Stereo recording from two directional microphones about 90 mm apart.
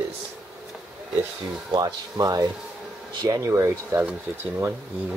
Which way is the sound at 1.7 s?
45° right (ahead or behind).